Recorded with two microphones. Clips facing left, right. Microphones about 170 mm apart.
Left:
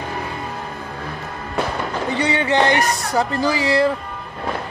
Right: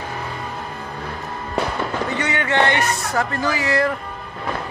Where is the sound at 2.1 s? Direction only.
35° left (ahead or behind).